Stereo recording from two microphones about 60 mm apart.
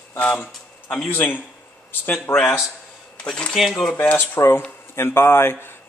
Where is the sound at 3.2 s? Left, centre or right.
Centre.